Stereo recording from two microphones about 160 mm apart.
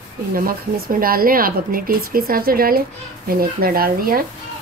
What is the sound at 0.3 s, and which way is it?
A woman's voice, 65° right (ahead or behind).